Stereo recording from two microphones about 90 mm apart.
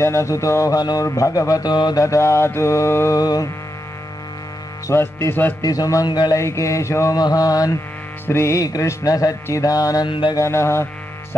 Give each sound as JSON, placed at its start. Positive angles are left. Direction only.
{"t": 0.0, "sound": "music", "side_deg": 30}
{"t": 2.0, "sound": "music", "side_deg": 35}
{"t": 3.2, "sound": "mantra", "side_deg": 45}
{"t": 4.8, "sound": "a sound", "side_deg": 30}
{"t": 5.6, "sound": "music", "side_deg": 40}
{"t": 6.0, "sound": "mantra", "side_deg": 55}
{"t": 6.3, "sound": "music", "side_deg": 35}
{"t": 7.2, "sound": "mantra", "side_deg": 45}
{"t": 8.3, "sound": "music", "side_deg": 30}
{"t": 10.0, "sound": "mantra", "side_deg": 70}
{"t": 10.3, "sound": "music", "side_deg": 30}